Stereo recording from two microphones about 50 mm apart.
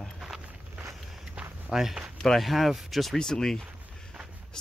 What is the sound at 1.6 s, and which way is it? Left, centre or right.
Speech, centre.